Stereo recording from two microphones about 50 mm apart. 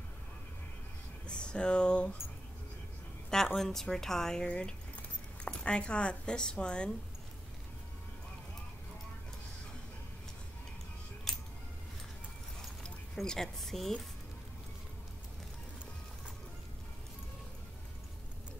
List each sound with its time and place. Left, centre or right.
1.2 s speech: centre
3.5 s speech: centre
11.3 s music: centre
12.6 s zipper: centre